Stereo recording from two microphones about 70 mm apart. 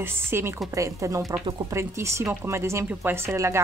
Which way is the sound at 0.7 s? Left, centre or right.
Right.